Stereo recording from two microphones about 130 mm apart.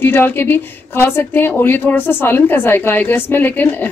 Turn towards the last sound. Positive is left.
turn(degrees=15)  # may be behind; listen again after turning